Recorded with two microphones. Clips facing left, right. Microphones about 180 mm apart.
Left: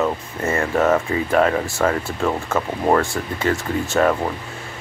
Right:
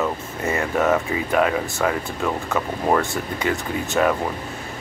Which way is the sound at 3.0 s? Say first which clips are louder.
Left 2 dB; 20° right (ahead or behind).